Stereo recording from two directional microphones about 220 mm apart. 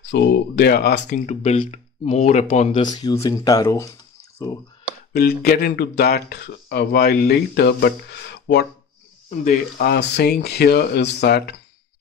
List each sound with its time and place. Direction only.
0.0 s speech: 50° left (ahead or behind)
1.2 s speech: 30° left (ahead or behind)
2.8 s speech: 20° left (ahead or behind)
5.1 s speech: 45° left (ahead or behind)